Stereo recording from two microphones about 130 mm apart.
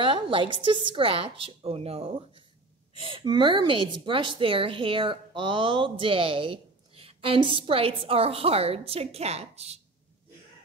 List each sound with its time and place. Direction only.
0.0 s a woman's voice: 40° right (ahead or behind)